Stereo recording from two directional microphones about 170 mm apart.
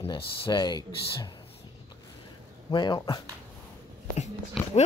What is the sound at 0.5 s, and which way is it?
Speech, 25° left (ahead or behind).